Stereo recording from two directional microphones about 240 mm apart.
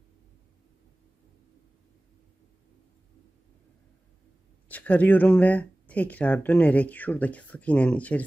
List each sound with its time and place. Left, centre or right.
4.6 s speech: centre